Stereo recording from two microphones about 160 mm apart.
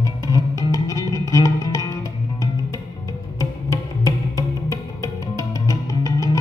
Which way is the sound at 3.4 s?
20° left (ahead or behind).